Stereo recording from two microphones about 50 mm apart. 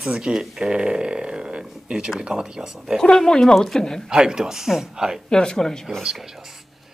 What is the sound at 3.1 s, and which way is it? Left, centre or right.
Speech, centre.